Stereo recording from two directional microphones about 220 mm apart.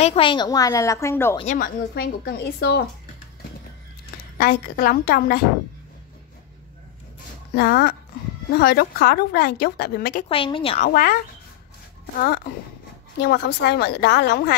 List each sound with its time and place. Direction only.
0.0 s a woman's voice: 25° left (ahead or behind)
1.4 s a woman's voice: 35° left (ahead or behind)
4.4 s a woman's voice: 40° left (ahead or behind)
7.5 s a woman's voice: 45° left (ahead or behind)
10.2 s speech: 25° left (ahead or behind)
10.9 s a woman's voice: 40° left (ahead or behind)
13.2 s a woman's voice: 45° left (ahead or behind)